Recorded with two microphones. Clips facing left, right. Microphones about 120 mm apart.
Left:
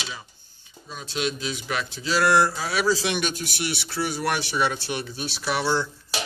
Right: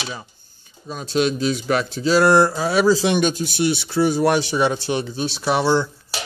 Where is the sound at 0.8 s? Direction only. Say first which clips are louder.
Right 8 dB; 50° right (ahead or behind).